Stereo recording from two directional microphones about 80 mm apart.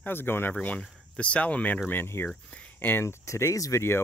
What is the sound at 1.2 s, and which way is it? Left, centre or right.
Speech, centre.